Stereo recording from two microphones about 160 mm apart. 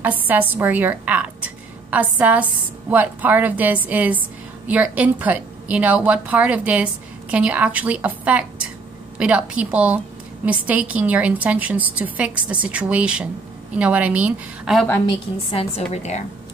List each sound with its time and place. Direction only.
0.0 s speech: 10° right (ahead or behind)
15.5 s a woman's voice: 45° left (ahead or behind)